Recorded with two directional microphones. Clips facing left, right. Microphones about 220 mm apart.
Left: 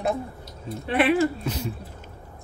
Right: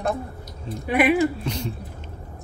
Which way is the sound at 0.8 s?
15° right (ahead or behind).